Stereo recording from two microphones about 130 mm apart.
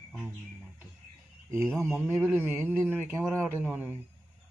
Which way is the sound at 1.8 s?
15° right (ahead or behind).